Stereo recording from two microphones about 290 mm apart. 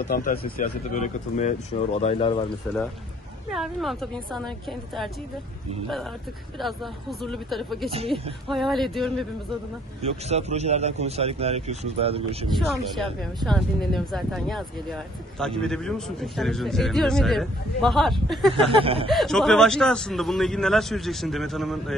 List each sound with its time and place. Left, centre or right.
0.1 s speech: left
3.5 s a man's voice: centre
6.6 s a man's voice: centre
10.0 s a man's voice: right
12.4 s a man's voice: centre
18.7 s a man's voice: centre
19.1 s a man's voice: centre